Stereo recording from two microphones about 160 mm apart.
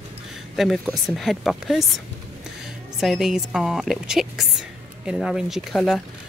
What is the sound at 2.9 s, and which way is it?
Speech, centre (ahead or behind).